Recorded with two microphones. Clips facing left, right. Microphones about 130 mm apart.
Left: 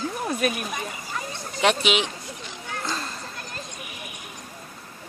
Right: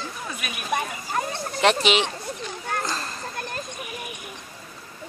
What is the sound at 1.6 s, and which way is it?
Speech, centre (ahead or behind).